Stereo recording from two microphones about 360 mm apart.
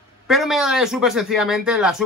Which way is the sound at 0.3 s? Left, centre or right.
Centre.